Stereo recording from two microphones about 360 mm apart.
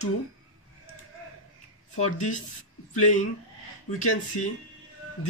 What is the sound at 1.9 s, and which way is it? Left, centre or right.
Speech, centre.